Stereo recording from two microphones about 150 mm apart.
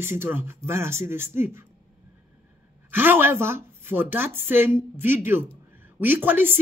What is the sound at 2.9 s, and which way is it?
Speech, 15° right (ahead or behind).